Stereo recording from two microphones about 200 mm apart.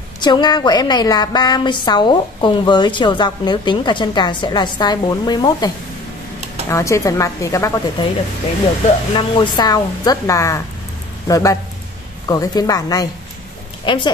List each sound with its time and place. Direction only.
0.2 s a woman's voice: 20° left (ahead or behind)
6.7 s a woman's voice: 15° left (ahead or behind)
8.8 s a woman's voice: 25° left (ahead or behind)